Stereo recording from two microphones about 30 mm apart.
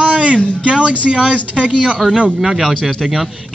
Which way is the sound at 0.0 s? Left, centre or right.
Right.